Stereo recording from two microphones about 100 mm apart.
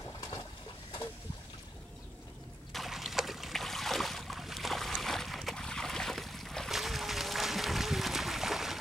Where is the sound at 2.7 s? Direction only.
Centre (ahead or behind).